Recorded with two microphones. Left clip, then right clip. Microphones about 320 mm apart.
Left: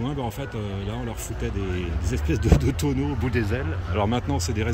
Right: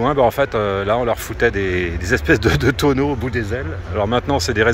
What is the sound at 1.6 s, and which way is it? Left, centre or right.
Speech, right.